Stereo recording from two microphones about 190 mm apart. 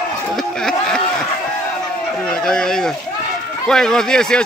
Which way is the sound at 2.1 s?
5° left (ahead or behind).